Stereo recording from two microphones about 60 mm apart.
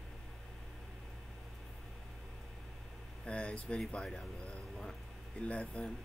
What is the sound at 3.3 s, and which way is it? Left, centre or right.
Speech, centre.